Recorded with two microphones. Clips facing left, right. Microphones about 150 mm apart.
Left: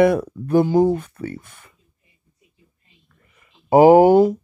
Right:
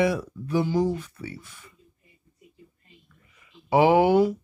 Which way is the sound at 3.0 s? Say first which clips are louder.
Left 1 dB; 50° left (ahead or behind).